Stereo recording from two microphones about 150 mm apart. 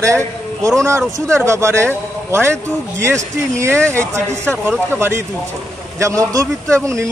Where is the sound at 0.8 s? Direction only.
20° right (ahead or behind).